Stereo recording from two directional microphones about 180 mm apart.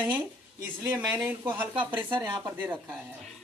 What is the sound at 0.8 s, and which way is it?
Speech, 15° right (ahead or behind).